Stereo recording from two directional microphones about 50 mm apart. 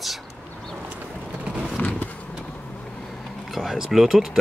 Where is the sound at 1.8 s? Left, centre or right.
Left.